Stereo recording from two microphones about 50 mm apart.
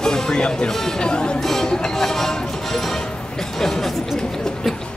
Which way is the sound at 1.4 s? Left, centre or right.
Centre.